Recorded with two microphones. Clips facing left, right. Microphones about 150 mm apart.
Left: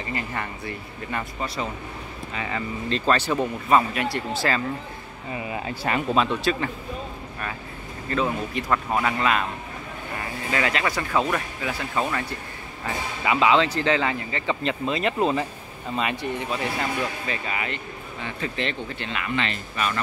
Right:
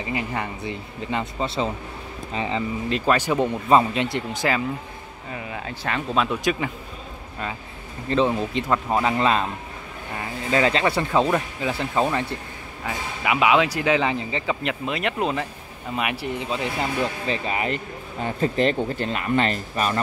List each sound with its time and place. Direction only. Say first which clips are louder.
0.0 s speech: right 3 dB; 15° right (ahead or behind)
2.9 s speech: right 1 dB; 10° right (ahead or behind)
3.6 s speech: right 2 dB; 25° right (ahead or behind)
5.3 s speech: left 2 dB; 5° left (ahead or behind)
6.2 s speech: even; 10° right (ahead or behind)
8.1 s speech: right 4 dB; 25° right (ahead or behind)
10.5 s speech: right 5 dB; 25° right (ahead or behind)
12.8 s speech: even; 10° right (ahead or behind)
17.0 s speech: right 4 dB; 30° right (ahead or behind)